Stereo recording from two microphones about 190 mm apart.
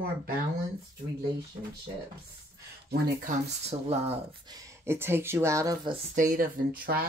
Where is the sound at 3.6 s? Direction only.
35° right (ahead or behind).